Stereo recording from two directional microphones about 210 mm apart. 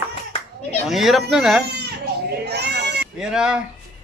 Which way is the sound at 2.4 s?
50° right (ahead or behind).